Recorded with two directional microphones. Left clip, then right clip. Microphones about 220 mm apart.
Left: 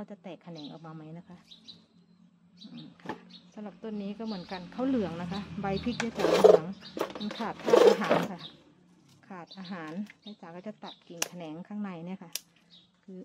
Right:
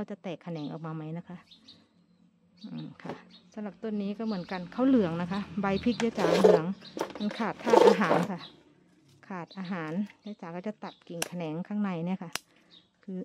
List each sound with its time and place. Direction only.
0.0 s speech: 50° right (ahead or behind)
3.0 s speech: 50° right (ahead or behind)